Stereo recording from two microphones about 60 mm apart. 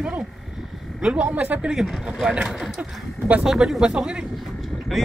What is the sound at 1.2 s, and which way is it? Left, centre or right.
Speech, right.